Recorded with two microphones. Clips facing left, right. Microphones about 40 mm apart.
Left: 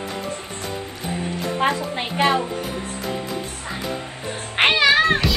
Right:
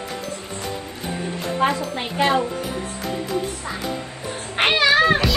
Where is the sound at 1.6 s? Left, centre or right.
Left.